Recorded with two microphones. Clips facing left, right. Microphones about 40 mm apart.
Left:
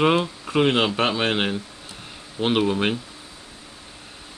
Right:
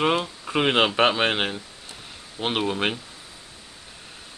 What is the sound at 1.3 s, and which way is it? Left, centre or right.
Speech, centre.